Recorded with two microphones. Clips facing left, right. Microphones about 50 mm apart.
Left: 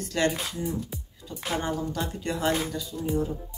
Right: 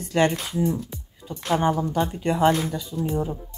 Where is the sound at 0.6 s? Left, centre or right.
Centre.